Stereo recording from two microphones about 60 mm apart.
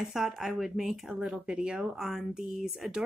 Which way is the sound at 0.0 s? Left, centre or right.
Centre.